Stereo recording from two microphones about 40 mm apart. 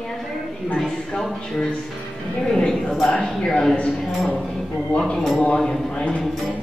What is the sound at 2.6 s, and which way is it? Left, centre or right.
Speech, centre.